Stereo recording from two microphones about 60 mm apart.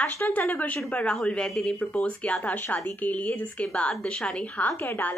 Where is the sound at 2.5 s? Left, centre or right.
Left.